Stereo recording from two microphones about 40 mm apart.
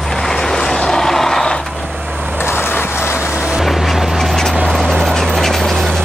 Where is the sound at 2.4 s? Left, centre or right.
Left.